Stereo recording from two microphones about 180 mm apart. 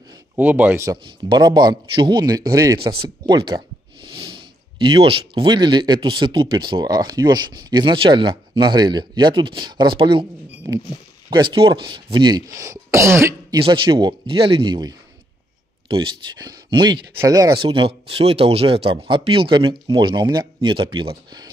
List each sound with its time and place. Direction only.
0.4 s speech: 10° right (ahead or behind); by 10.2 s 25° right (ahead or behind)
11.2 s speech: 25° right (ahead or behind)
17.6 s speech: 30° right (ahead or behind)